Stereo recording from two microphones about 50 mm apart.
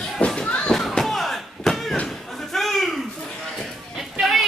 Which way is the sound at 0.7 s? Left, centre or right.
Centre.